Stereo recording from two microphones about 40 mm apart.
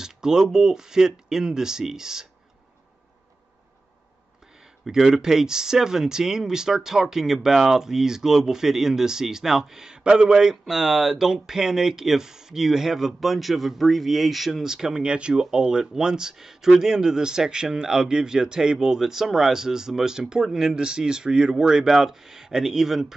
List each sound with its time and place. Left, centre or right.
0.0 s speech: centre
4.8 s speech: centre
14.6 s speech: centre